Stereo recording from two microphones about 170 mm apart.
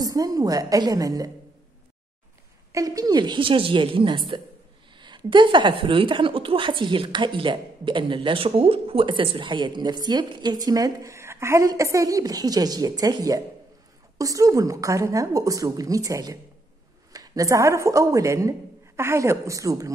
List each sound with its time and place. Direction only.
0.0 s a woman's voice: 20° right (ahead or behind)
2.7 s a woman's voice: 20° right (ahead or behind)